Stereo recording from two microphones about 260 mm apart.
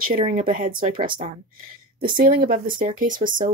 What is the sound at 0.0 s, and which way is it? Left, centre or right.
Speech, right.